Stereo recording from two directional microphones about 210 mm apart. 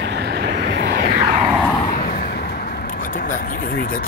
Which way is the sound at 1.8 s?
45° left (ahead or behind).